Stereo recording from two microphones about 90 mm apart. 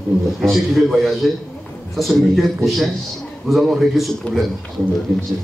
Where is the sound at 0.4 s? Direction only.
Centre (ahead or behind).